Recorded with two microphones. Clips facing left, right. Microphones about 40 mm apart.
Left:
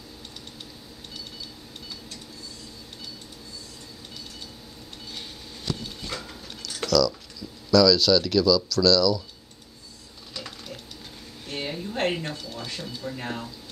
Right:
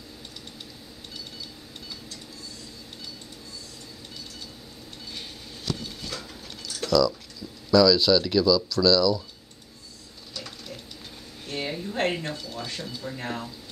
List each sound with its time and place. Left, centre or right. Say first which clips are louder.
6.9 s speech: even; right
11.5 s speech: right 1 dB; centre